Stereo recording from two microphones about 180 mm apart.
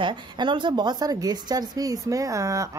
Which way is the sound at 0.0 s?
25° right (ahead or behind).